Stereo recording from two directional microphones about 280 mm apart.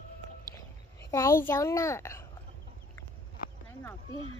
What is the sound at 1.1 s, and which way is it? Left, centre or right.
A child's voice, centre.